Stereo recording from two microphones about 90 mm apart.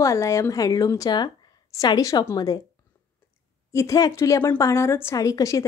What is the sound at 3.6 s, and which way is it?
A woman's voice, 35° left (ahead or behind).